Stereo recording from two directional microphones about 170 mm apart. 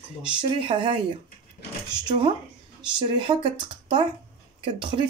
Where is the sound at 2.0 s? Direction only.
30° right (ahead or behind).